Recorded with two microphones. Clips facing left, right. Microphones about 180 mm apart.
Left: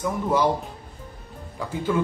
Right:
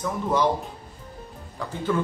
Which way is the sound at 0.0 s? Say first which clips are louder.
Left 1 dB; 10° left (ahead or behind).